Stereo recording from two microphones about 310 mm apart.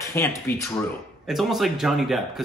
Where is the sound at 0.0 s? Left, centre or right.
Centre.